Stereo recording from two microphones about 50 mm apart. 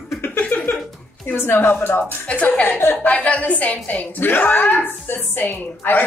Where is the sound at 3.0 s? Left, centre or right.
Left.